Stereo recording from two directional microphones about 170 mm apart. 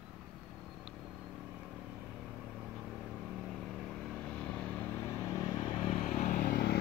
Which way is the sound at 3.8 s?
5° left (ahead or behind).